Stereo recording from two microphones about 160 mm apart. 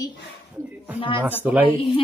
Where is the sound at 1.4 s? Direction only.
10° right (ahead or behind).